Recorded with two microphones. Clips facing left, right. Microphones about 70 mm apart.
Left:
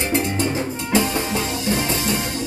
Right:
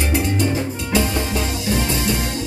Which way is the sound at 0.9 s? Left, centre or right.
Left.